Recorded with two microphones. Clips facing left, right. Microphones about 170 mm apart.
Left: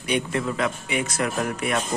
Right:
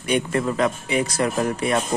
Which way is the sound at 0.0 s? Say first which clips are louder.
Right 3 dB; 45° right (ahead or behind).